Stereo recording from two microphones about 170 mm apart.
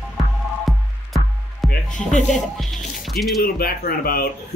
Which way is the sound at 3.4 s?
65° left (ahead or behind).